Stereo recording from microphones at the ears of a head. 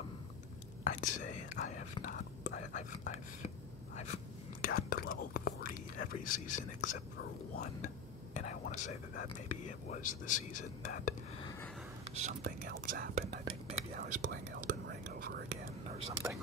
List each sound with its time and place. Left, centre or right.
0.8 s speech: left
3.9 s whispering: left
8.5 s speech: left
12.2 s speech: right
13.7 s whispering: right